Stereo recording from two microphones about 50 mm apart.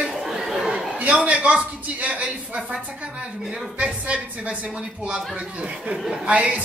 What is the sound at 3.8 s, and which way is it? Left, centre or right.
Speech, right.